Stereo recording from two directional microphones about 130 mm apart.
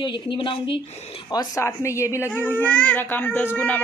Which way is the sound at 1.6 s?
20° left (ahead or behind).